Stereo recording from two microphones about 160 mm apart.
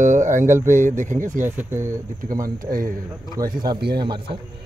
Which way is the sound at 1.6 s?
15° right (ahead or behind).